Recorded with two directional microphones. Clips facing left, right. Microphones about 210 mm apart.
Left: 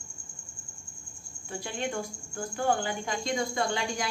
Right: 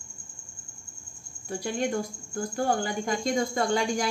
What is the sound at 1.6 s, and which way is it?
Speech, 40° right (ahead or behind).